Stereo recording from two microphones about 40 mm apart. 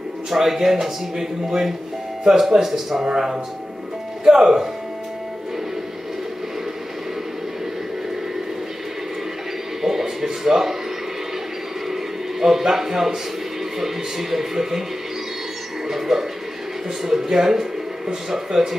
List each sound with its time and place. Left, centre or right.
0.3 s speech: centre
9.8 s speech: centre
11.9 s music: centre
13.7 s speech: centre
15.9 s music: centre
17.0 s speech: centre